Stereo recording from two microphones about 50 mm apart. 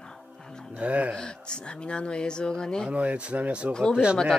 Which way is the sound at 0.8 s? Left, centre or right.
Right.